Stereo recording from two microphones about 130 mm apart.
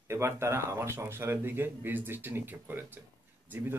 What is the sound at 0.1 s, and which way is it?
A man's voice, 20° right (ahead or behind).